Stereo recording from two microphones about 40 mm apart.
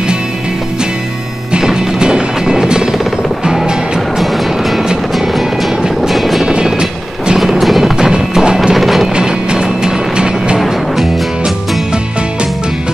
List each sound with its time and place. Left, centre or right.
1.5 s music: centre
4.2 s music: centre
6.5 s music: centre
7.6 s music: centre
8.0 s music: centre
8.7 s music: centre
9.1 s music: centre